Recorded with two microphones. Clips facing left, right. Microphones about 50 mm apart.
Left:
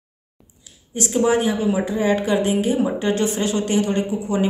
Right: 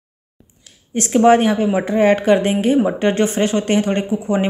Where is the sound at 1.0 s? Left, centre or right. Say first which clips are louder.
Right 6 dB; right.